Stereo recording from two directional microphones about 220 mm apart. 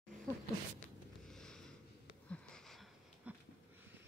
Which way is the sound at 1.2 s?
5° left (ahead or behind).